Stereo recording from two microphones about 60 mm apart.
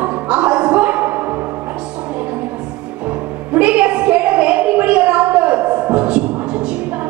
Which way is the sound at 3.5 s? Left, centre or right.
Right.